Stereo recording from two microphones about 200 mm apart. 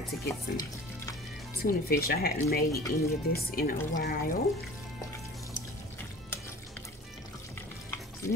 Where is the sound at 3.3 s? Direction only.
50° left (ahead or behind).